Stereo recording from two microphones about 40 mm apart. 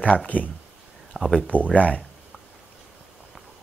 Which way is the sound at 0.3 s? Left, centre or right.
Left.